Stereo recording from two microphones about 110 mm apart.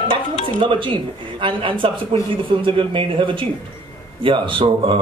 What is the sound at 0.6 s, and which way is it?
A man's voice, 50° right (ahead or behind).